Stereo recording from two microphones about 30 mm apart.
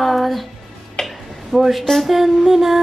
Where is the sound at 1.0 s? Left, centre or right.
Left.